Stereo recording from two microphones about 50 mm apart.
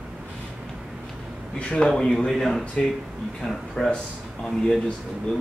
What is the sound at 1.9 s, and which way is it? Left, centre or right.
Speech, centre.